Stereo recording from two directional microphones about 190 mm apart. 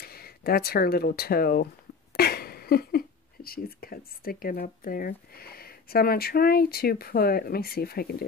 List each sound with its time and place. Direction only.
0.0 s speech: 55° left (ahead or behind)